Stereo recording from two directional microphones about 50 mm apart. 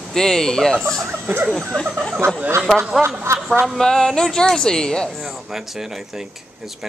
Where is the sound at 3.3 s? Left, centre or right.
Right.